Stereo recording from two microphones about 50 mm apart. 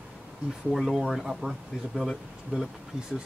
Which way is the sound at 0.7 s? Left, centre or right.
Centre.